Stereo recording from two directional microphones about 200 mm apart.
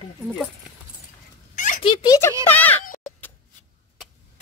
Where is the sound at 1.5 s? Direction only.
40° left (ahead or behind).